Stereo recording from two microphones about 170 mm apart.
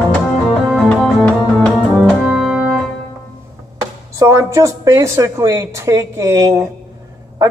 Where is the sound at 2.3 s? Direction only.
5° right (ahead or behind).